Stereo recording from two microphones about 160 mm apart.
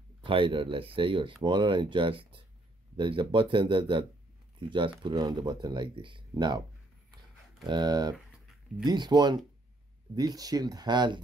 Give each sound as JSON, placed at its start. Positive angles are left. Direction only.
{"t": 0.2, "sound": "speech", "side_deg": -30}
{"t": 7.6, "sound": "speech", "side_deg": -25}